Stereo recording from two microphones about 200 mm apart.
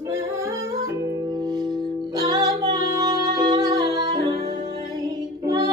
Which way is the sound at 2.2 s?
15° right (ahead or behind).